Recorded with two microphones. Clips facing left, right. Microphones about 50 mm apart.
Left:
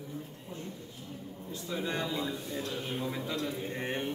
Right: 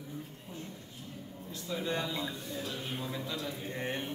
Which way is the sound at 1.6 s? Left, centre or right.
Centre.